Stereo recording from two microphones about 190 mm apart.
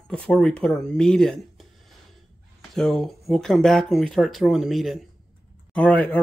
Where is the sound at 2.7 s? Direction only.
Centre (ahead or behind).